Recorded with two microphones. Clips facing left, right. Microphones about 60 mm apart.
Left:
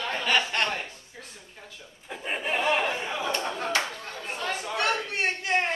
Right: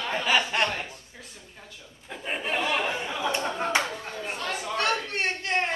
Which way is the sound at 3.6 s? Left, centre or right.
Right.